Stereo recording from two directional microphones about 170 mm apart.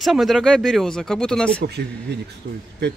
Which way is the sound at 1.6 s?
75° right (ahead or behind).